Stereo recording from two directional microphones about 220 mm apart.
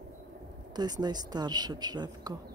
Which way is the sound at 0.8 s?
20° right (ahead or behind).